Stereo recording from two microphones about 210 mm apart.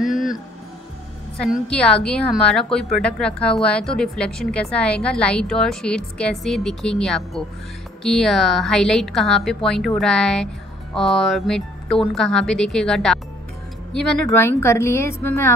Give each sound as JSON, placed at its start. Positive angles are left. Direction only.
{"t": 0.0, "sound": "music", "side_deg": 0}
{"t": 1.4, "sound": "a woman's voice", "side_deg": 5}
{"t": 14.2, "sound": "a woman's voice", "side_deg": 10}